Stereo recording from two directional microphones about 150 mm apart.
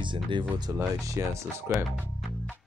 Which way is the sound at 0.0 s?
30° right (ahead or behind).